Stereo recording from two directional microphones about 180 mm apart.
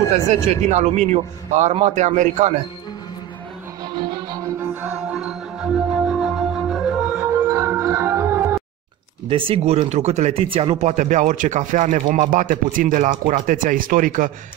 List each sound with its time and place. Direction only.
0.5 s a man's voice: 40° right (ahead or behind)
3.9 s music: 25° right (ahead or behind)
4.9 s music: 5° right (ahead or behind)
9.3 s speech: 35° right (ahead or behind)